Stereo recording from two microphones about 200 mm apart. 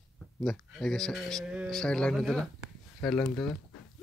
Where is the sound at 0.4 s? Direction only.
Centre (ahead or behind).